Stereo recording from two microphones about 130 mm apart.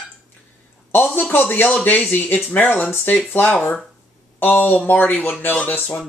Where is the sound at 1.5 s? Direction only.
15° left (ahead or behind).